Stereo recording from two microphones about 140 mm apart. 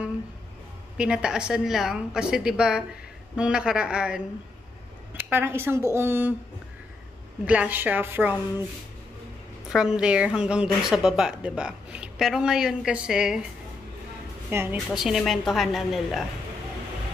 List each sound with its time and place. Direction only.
0.9 s a woman's voice: 5° right (ahead or behind)
7.4 s a woman's voice: 10° right (ahead or behind)
9.7 s speech: 5° right (ahead or behind)
14.5 s a woman's voice: 15° right (ahead or behind)
14.9 s speech: centre (ahead or behind)